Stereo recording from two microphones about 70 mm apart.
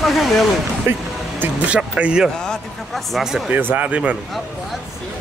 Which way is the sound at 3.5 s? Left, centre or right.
Right.